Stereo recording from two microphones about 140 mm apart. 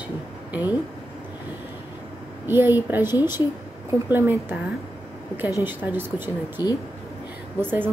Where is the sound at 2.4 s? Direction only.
15° right (ahead or behind).